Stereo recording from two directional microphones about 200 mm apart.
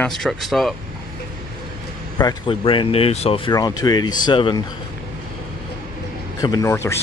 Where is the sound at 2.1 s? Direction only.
25° left (ahead or behind).